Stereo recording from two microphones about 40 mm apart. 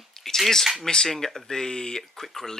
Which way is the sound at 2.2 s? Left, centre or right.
Centre.